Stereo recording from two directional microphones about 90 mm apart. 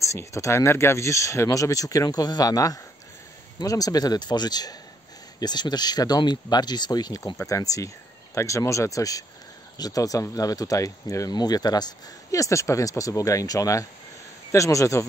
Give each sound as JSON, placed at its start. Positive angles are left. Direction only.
{"t": 0.0, "sound": "speech", "side_deg": 35}